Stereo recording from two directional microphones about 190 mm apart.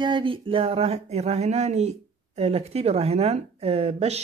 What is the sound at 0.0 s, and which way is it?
Speech, 25° right (ahead or behind).